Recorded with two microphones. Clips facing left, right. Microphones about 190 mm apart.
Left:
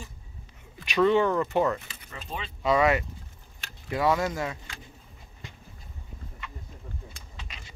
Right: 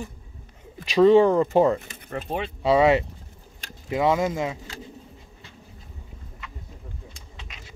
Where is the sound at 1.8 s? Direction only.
50° right (ahead or behind).